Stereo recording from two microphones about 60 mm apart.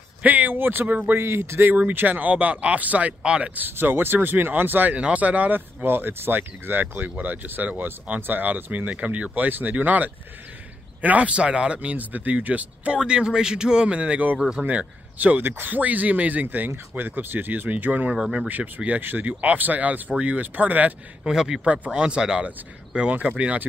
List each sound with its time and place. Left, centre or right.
0.2 s speech: right
1.7 s speech: right
3.5 s speech: right
4.9 s speech: right
5.9 s speech: right
21.2 s speech: centre
21.6 s speech: right